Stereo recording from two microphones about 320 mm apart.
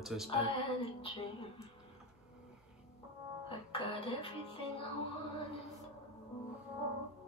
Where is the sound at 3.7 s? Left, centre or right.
Centre.